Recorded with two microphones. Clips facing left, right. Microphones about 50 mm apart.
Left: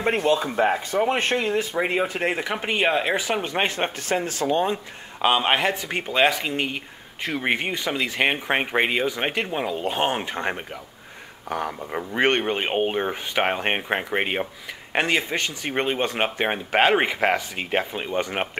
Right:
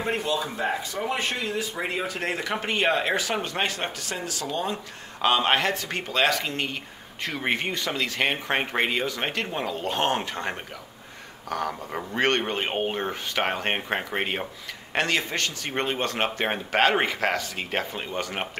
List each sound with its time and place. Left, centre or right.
0.0 s speech: left
5.2 s speech: centre